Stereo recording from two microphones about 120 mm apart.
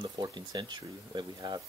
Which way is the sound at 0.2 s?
35° right (ahead or behind).